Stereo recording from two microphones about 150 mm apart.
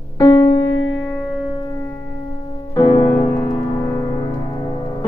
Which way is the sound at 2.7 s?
30° left (ahead or behind).